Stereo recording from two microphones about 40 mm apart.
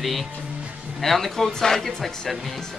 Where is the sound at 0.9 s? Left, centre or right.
Centre.